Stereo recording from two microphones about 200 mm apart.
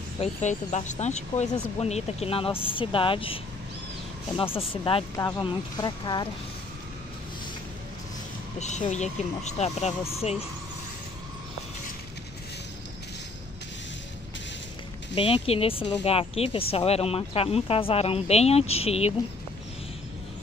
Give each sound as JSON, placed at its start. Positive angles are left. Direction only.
{"t": 0.2, "sound": "speech", "side_deg": 35}
{"t": 4.6, "sound": "speech", "side_deg": 25}
{"t": 5.1, "sound": "speech", "side_deg": 15}
{"t": 8.5, "sound": "speech", "side_deg": 35}
{"t": 15.1, "sound": "speech", "side_deg": 25}